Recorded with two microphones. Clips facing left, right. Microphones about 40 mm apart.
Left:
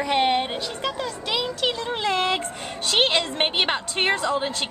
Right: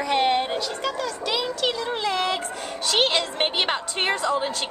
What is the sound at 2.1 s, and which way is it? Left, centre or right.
A woman's voice, left.